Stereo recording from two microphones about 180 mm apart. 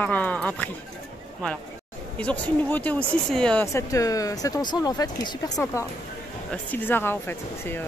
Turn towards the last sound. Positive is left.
turn(degrees=10)  # may be behind; listen again after turning